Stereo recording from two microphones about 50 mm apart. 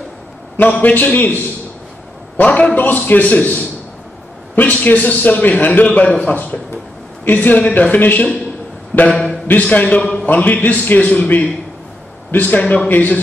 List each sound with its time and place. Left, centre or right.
0.6 s a man's voice: left
9.1 s a man's voice: centre
9.6 s a man's voice: left